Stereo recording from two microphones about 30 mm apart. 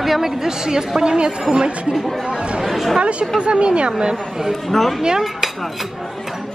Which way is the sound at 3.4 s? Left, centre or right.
Right.